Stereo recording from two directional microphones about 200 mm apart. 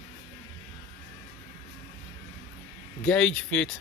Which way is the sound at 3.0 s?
5° left (ahead or behind).